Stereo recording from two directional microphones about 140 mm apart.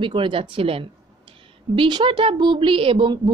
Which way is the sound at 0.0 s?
35° right (ahead or behind).